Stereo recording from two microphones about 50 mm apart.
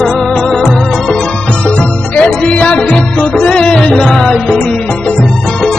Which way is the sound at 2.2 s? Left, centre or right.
Centre.